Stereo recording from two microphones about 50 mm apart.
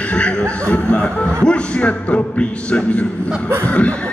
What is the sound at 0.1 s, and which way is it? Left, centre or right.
Speech, left.